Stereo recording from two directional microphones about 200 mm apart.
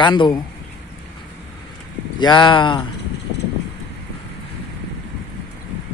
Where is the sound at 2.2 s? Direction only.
20° left (ahead or behind).